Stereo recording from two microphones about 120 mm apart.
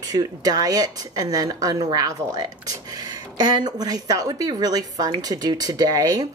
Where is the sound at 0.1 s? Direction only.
30° right (ahead or behind).